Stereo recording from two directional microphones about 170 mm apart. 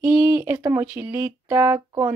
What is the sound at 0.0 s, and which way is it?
Speech, 15° right (ahead or behind).